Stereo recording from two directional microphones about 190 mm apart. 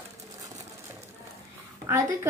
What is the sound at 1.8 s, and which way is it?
Speech, 15° right (ahead or behind).